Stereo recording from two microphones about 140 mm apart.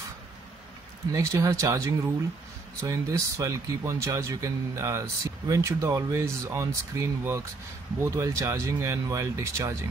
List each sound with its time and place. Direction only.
1.1 s speech: 20° right (ahead or behind)